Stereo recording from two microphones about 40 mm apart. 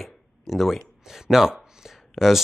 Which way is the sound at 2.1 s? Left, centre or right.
Centre.